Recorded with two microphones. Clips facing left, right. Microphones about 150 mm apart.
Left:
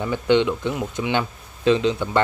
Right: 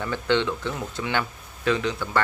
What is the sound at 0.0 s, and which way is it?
Speech, 15° left (ahead or behind).